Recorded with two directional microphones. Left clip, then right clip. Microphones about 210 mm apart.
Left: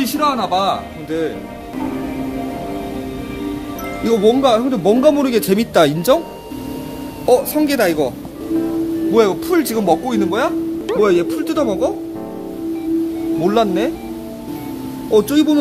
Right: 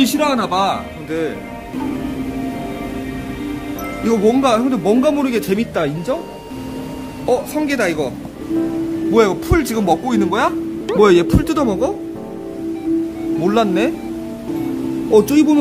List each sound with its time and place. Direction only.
0.0 s speech: 10° right (ahead or behind)
4.0 s speech: 10° left (ahead or behind); by 6.1 s 30° left (ahead or behind)
7.2 s speech: 15° left (ahead or behind)
9.1 s speech: centre (ahead or behind)
11.0 s speech: 20° right (ahead or behind)
13.4 s speech: centre (ahead or behind)
15.0 s speech: centre (ahead or behind)